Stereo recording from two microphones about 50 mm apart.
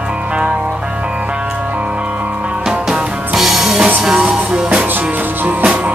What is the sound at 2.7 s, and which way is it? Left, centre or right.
Music, centre.